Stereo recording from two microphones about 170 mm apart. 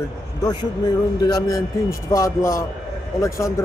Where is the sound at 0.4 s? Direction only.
25° left (ahead or behind).